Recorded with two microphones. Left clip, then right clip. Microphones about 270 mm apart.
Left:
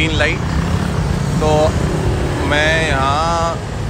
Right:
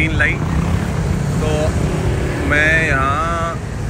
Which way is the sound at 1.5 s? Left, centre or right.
Left.